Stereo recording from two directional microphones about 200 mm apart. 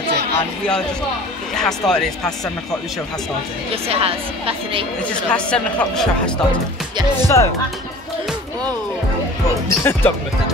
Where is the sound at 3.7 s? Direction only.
30° right (ahead or behind).